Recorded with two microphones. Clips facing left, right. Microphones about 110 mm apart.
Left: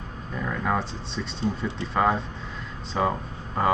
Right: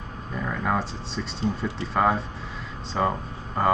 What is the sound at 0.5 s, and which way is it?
Speech, centre (ahead or behind).